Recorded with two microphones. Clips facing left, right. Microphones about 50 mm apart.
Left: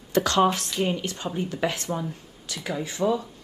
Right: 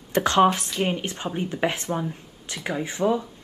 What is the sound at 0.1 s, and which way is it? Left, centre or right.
A woman's voice, right.